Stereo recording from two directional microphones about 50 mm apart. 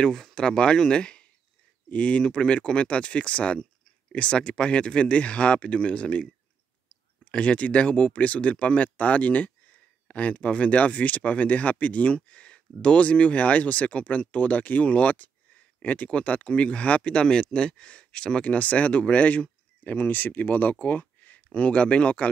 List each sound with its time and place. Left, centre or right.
0.0 s speech: centre
7.2 s speech: left
20.8 s a sound: left
21.5 s speech: left